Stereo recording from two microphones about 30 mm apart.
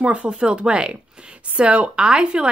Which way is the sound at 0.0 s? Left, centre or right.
Right.